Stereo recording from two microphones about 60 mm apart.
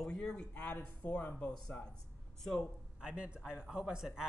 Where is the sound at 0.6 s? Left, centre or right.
Left.